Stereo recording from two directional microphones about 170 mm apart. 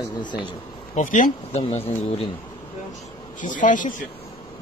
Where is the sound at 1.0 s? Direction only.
45° left (ahead or behind).